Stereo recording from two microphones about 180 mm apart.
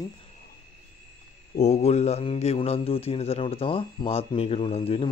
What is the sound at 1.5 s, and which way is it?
A man's voice, 40° left (ahead or behind).